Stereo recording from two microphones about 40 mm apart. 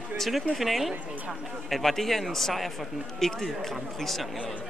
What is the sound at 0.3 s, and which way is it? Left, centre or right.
Speech, centre.